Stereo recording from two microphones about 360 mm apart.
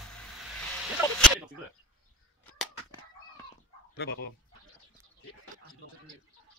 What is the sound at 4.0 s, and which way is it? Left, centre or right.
Speech, left.